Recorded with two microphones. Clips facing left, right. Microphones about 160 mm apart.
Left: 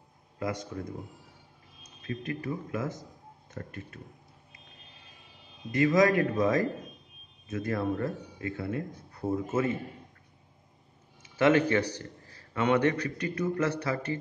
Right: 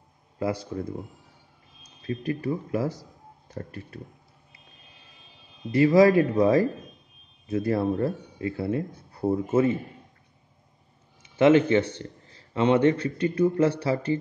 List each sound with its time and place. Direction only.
0.4 s a man's voice: 30° right (ahead or behind)
5.7 s a man's voice: 30° right (ahead or behind)
11.2 s a man's voice: 25° right (ahead or behind)